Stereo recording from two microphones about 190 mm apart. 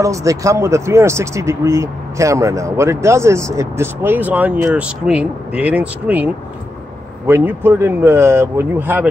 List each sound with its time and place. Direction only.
0.0 s speech: 15° right (ahead or behind)